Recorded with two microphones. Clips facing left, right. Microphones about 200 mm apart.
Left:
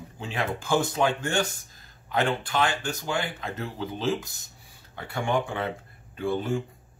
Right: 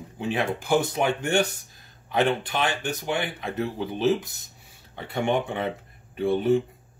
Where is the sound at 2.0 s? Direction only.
20° right (ahead or behind).